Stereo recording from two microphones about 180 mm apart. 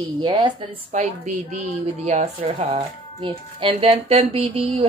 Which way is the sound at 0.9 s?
40° right (ahead or behind).